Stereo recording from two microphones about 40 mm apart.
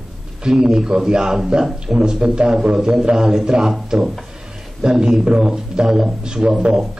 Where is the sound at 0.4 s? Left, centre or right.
Centre.